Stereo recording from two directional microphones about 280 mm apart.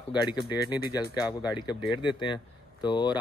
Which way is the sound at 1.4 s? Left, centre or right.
Centre.